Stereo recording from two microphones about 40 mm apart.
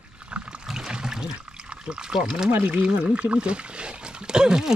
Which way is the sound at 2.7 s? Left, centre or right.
Right.